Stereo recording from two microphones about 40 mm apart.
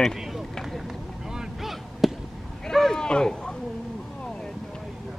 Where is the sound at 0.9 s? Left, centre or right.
Centre.